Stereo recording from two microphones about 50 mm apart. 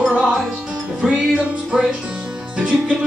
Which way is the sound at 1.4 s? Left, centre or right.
Right.